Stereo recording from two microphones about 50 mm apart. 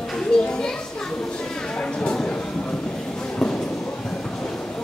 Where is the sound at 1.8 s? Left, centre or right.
Centre.